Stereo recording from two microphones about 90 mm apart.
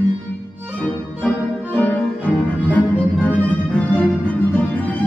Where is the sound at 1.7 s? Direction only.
15° left (ahead or behind).